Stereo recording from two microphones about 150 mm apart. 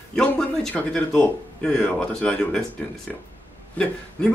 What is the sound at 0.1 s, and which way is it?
A man's voice, 5° left (ahead or behind).